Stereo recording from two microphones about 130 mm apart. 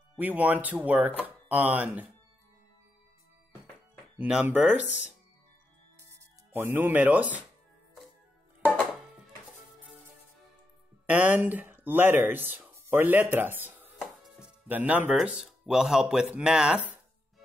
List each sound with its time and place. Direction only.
0.2 s speech: 10° right (ahead or behind)
4.2 s speech: 10° right (ahead or behind)
5.9 s music: 20° right (ahead or behind)
11.1 s speech: 10° right (ahead or behind)
13.9 s music: centre (ahead or behind)
14.7 s speech: 15° right (ahead or behind)